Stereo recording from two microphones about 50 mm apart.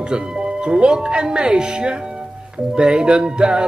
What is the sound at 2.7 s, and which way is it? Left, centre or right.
Music, centre.